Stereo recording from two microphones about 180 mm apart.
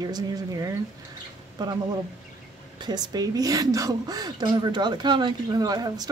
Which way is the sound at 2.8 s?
20° right (ahead or behind).